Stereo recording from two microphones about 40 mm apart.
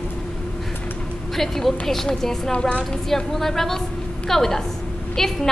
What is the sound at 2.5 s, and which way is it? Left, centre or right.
Speech, left.